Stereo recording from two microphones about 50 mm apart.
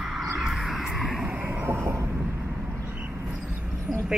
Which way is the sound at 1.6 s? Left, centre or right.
Right.